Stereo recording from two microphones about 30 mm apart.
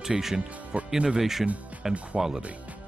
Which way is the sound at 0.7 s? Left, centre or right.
Right.